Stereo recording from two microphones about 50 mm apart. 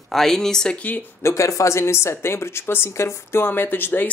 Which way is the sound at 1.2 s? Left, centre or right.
Left.